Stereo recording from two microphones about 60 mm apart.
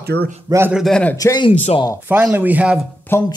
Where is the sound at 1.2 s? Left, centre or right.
Left.